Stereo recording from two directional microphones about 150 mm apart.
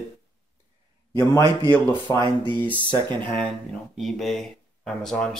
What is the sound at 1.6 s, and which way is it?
Speech, 15° left (ahead or behind).